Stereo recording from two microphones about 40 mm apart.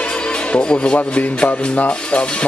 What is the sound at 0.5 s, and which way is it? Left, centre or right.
Speech, left.